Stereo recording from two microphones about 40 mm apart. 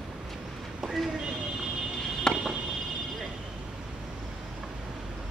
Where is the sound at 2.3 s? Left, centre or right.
Centre.